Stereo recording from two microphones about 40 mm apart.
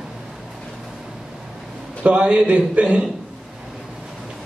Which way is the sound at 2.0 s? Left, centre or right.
Right.